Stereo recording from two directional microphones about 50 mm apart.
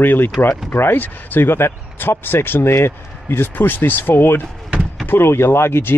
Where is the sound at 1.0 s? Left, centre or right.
Left.